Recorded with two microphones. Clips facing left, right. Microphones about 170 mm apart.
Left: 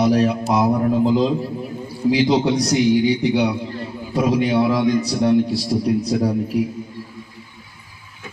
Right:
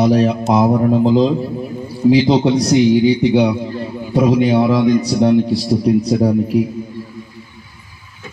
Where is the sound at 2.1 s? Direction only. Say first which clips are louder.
Right 5 dB; 25° right (ahead or behind).